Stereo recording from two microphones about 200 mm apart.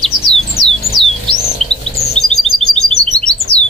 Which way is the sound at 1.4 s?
30° left (ahead or behind).